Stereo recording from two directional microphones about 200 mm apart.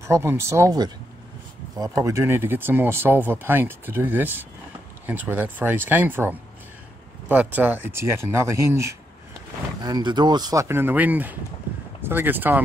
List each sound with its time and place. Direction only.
0.0 s speech: 15° right (ahead or behind)